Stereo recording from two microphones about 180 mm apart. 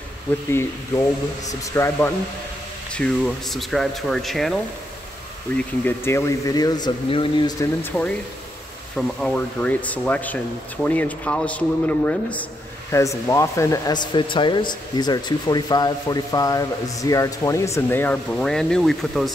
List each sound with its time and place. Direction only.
0.5 s speech: 15° left (ahead or behind)
2.9 s speech: 5° left (ahead or behind)
5.9 s speech: 15° left (ahead or behind)
7.8 s speech: 10° left (ahead or behind)